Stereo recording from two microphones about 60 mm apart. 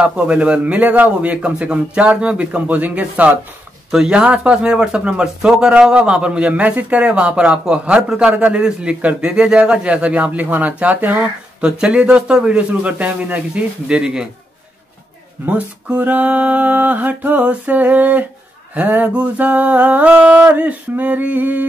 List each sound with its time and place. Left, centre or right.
0.0 s a man's voice: right
15.4 s a man's voice: right